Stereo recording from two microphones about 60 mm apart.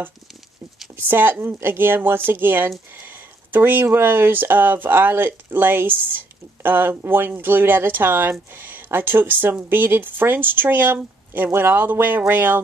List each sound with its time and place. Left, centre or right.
0.9 s speech: right
2.9 s a sound: right
3.8 s speech: right